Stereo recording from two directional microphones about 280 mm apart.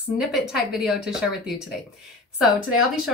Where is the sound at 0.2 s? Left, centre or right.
Centre.